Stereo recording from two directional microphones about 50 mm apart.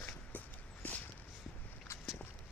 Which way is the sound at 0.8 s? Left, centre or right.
Left.